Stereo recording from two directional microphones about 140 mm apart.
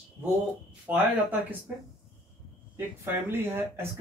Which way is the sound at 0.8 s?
10° right (ahead or behind).